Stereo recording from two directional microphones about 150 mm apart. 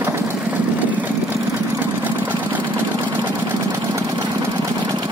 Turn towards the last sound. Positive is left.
turn(degrees=-25)  # may be behind; listen again after turning